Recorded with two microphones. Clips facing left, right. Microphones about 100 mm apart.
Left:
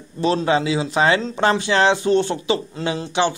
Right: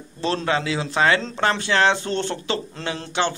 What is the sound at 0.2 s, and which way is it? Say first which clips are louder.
Speech: left 5 dB; 15° left (ahead or behind).